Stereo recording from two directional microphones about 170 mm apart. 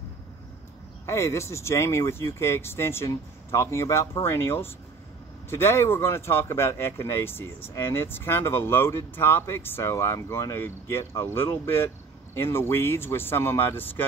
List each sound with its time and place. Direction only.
1.0 s speech: 15° left (ahead or behind)